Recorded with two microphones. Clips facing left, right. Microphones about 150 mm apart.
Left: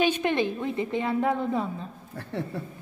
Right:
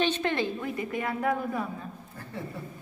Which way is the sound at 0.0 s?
15° left (ahead or behind).